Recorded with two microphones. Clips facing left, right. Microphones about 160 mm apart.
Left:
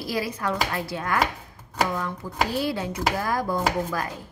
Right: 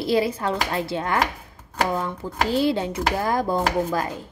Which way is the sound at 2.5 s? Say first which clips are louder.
Right 5 dB; 25° right (ahead or behind).